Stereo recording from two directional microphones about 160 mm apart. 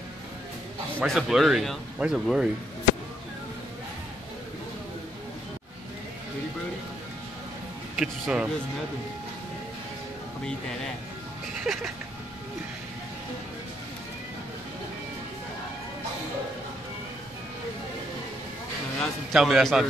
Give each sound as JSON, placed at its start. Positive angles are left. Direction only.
{"t": 0.9, "sound": "speech", "side_deg": 0}
{"t": 7.9, "sound": "speech", "side_deg": -5}
{"t": 11.6, "sound": "music", "side_deg": 0}
{"t": 18.9, "sound": "a man's voice", "side_deg": 0}